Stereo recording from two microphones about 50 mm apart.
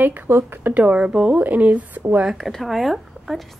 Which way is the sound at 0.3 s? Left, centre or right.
Right.